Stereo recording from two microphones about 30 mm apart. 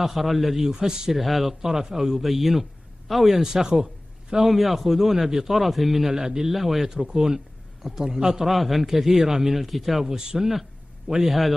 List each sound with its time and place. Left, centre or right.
0.0 s a man's voice: centre
0.6 s a man's voice: centre
1.1 s a man's voice: centre
1.5 s a man's voice: centre
3.3 s a man's voice: centre
3.7 s a sound: right
4.5 s speech: centre
6.1 s a man's voice: centre
6.5 s speech: centre
7.1 s a man's voice: right
8.5 s speech: centre
9.7 s a man's voice: centre
10.0 s a man's voice: right
11.2 s a man's voice: centre